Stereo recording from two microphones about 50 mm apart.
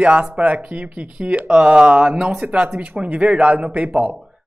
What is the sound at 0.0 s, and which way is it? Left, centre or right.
A woman's voice, right.